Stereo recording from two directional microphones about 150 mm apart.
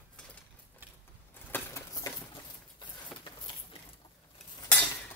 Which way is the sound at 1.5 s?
20° left (ahead or behind).